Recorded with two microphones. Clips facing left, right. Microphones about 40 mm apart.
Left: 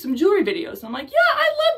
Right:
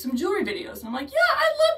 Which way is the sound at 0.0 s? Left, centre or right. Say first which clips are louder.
Left 7 dB; left.